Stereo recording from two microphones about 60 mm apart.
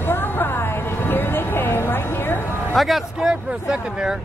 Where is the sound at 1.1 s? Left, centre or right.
Left.